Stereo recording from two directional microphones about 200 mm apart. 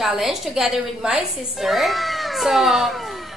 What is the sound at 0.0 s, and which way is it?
A woman's voice, centre (ahead or behind).